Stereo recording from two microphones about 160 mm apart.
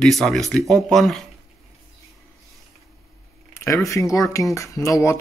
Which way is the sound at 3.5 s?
15° left (ahead or behind).